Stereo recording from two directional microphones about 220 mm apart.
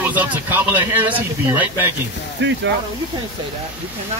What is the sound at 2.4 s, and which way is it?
Speech, 55° right (ahead or behind).